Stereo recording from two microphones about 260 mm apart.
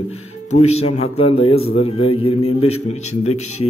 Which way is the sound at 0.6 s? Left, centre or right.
Left.